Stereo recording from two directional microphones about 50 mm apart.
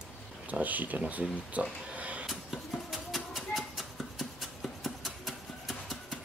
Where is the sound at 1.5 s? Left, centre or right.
Right.